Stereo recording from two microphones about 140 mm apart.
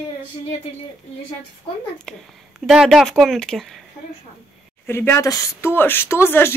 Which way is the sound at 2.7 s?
5° right (ahead or behind).